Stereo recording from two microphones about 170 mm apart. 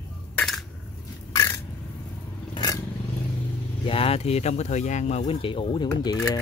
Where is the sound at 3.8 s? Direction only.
35° left (ahead or behind).